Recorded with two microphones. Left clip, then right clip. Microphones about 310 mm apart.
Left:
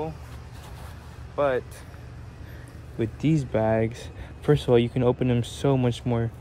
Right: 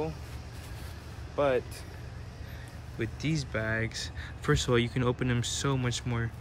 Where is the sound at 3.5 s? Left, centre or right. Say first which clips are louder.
Left 9 dB; left.